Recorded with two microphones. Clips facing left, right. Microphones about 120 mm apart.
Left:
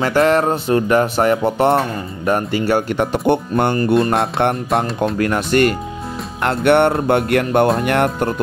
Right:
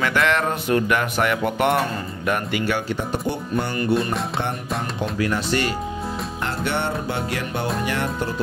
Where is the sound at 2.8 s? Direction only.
75° left (ahead or behind); by 8.3 s 60° left (ahead or behind).